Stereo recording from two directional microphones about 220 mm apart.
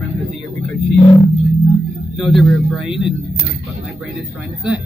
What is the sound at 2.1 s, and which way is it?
Speech, centre (ahead or behind).